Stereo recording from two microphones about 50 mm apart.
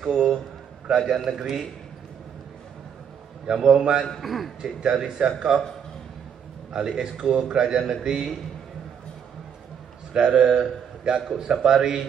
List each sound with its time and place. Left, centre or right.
0.0 s a sound: centre
0.8 s a man's voice: centre
1.1 s a man's voice: centre
3.4 s a man's voice: centre
4.2 s a man's voice: centre
4.6 s a man's voice: centre
6.7 s a man's voice: centre
10.1 s a man's voice: centre